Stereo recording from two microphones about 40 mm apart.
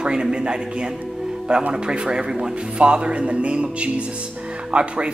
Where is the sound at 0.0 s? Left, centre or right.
Right.